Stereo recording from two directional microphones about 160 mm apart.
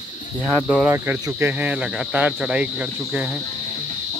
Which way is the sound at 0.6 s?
10° right (ahead or behind).